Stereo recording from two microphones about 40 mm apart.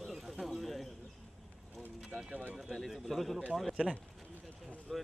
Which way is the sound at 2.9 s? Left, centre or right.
Centre.